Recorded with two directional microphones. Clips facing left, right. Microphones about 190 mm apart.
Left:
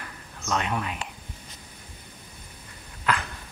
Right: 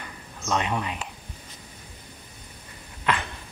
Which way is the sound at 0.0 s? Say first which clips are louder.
Right 2 dB; centre (ahead or behind).